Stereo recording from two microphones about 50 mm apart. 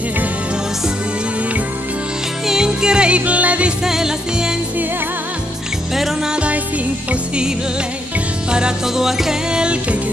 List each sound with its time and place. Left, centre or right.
2.4 s music: centre; by 3.7 s right
3.8 s music: centre
5.9 s music: centre
6.3 s music: right